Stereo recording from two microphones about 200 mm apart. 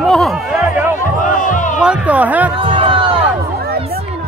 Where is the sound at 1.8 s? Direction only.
5° right (ahead or behind).